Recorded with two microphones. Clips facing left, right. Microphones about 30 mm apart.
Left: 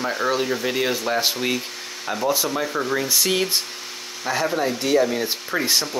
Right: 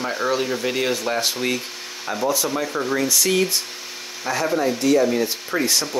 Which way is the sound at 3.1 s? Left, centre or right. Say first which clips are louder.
Right 1 dB; centre.